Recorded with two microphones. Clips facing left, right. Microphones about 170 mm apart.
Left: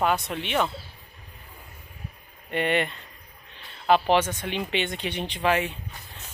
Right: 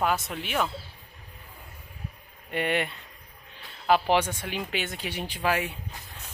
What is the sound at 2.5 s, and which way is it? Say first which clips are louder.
Speech: left 3 dB; 5° right (ahead or behind).